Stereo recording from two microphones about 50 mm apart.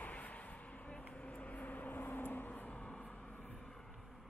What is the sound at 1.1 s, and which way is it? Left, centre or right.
Vehicle, left.